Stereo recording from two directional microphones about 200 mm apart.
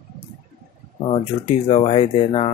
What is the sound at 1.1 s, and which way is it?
Speech, 30° left (ahead or behind).